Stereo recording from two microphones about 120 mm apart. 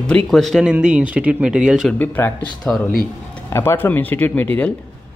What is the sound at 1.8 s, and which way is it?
Speech, 15° left (ahead or behind).